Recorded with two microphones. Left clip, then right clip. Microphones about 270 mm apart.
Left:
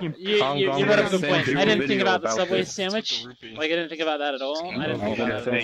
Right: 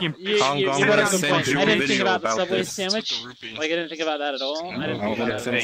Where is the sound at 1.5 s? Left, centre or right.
Centre.